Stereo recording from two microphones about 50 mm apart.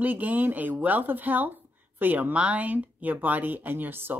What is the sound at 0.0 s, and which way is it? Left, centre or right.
Speech, right.